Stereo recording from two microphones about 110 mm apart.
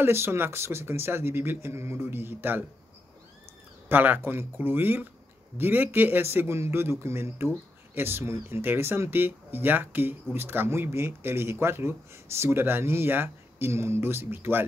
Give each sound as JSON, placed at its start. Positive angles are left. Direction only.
{"t": 0.0, "sound": "a man's voice", "side_deg": -20}
{"t": 3.9, "sound": "a man's voice", "side_deg": -15}